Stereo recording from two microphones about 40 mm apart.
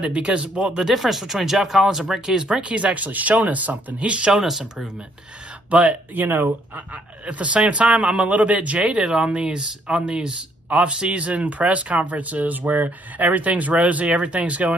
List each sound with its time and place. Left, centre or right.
0.0 s speech: right
0.7 s speech: centre
2.7 s speech: right
4.0 s speech: right
4.3 s speech: centre
5.7 s speech: right
6.1 s speech: right
6.9 s speech: right
8.2 s speech: right
8.9 s speech: centre
9.2 s speech: right